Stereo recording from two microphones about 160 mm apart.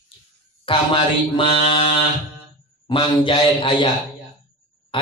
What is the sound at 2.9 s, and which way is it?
A man's voice, 30° left (ahead or behind).